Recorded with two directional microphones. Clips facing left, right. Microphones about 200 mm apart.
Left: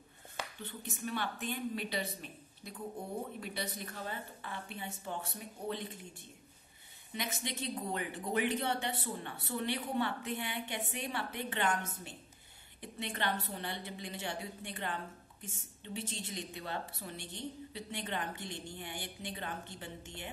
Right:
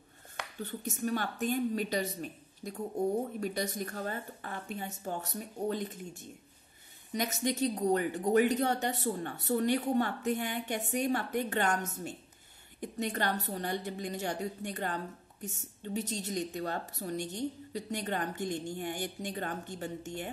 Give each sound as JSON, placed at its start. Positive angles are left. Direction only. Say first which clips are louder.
{"t": 0.6, "sound": "speech", "louder": "right 7 dB", "side_deg": -40}